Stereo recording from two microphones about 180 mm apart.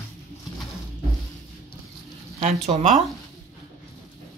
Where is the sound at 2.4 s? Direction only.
40° right (ahead or behind).